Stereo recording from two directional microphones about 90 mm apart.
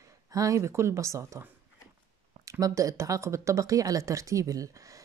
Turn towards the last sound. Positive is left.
turn(degrees=-40)  # may be behind; listen again after turning